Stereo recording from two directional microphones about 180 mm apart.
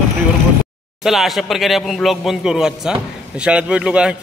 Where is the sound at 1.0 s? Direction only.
Centre (ahead or behind).